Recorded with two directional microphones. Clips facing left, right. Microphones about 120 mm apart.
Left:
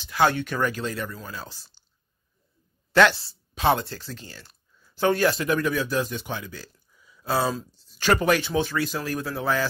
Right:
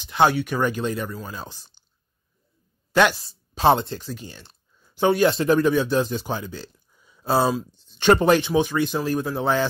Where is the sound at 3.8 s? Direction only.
20° right (ahead or behind).